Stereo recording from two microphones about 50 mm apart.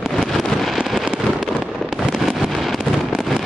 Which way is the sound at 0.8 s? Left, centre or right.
Centre.